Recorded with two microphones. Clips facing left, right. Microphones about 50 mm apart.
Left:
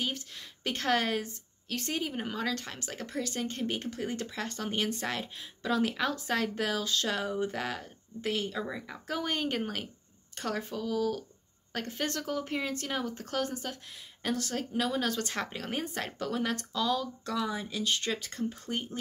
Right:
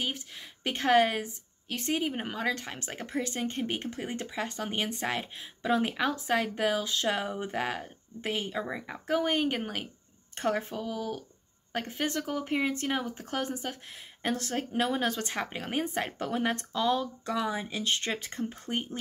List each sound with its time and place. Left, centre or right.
0.0 s a woman's voice: centre
10.3 s a woman's voice: right